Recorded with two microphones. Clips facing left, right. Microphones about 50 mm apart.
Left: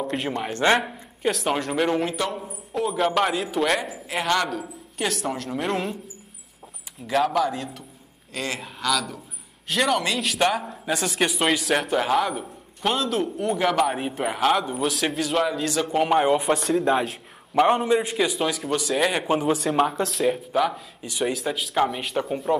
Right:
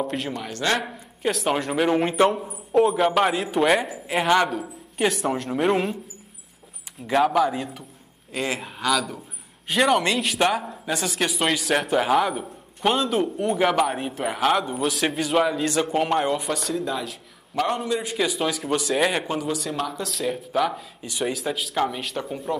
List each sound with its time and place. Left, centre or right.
0.4 s speech: left
0.7 s speech: centre
7.1 s a man's voice: centre
15.9 s speech: centre
16.3 s speech: centre
16.8 s speech: left
17.6 s speech: centre
19.2 s speech: left
20.2 s speech: centre